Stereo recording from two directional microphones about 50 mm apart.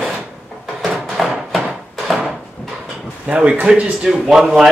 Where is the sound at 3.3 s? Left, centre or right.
Right.